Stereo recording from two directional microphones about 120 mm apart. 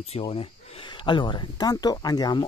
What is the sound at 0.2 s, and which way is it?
Speech, 50° left (ahead or behind).